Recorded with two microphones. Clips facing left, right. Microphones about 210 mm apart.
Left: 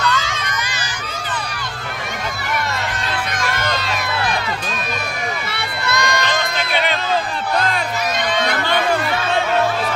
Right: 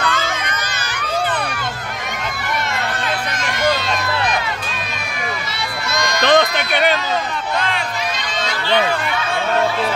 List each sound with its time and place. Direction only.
5.9 s music: 60° left (ahead or behind)
6.2 s a sound: 60° right (ahead or behind)
8.4 s chatter: 60° left (ahead or behind)